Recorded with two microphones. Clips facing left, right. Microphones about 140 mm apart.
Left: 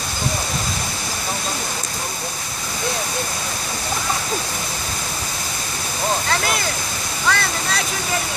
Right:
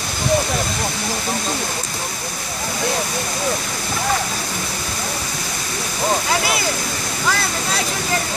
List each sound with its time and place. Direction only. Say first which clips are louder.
7.2 s speech: left 1 dB; 5° right (ahead or behind)